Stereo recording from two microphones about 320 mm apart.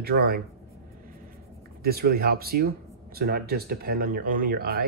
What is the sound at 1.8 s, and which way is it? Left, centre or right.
Speech, right.